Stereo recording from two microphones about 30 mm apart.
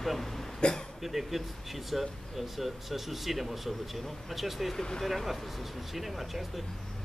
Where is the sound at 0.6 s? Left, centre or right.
Left.